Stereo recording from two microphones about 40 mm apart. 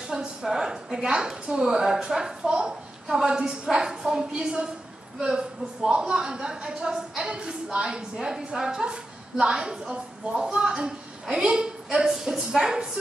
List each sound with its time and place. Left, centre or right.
0.0 s a woman's voice: centre